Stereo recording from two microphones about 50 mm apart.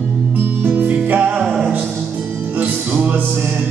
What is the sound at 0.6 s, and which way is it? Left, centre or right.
Music, right.